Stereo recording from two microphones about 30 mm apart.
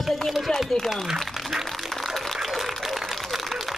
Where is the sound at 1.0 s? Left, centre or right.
Centre.